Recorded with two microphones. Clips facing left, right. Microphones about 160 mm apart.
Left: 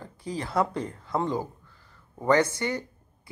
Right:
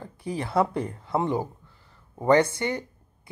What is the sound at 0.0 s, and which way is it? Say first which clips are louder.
Speech: right 2 dB; 20° right (ahead or behind).